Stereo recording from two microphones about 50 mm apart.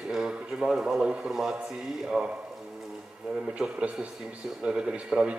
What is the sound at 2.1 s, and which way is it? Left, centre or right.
Speech, right.